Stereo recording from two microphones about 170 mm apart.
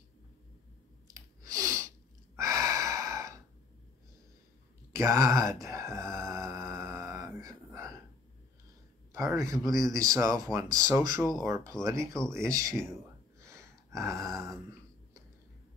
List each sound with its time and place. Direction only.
1.0 s a sound: 20° right (ahead or behind)
2.3 s gasp: 20° right (ahead or behind)
4.9 s a sound: 15° right (ahead or behind)
9.1 s speech: 20° right (ahead or behind)
13.4 s gasp: 15° right (ahead or behind)
14.3 s speech: 15° right (ahead or behind)